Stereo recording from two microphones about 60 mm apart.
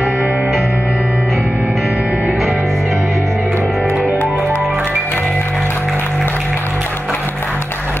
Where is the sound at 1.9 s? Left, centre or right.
Right.